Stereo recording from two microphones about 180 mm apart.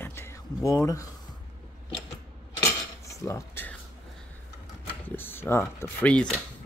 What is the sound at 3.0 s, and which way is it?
Cutlery, 15° left (ahead or behind).